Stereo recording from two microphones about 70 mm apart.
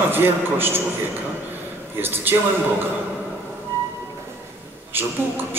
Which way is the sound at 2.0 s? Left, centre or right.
Right.